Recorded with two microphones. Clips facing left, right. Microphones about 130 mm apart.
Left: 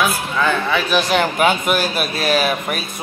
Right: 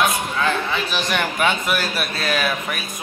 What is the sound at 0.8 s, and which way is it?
Speech, 40° left (ahead or behind).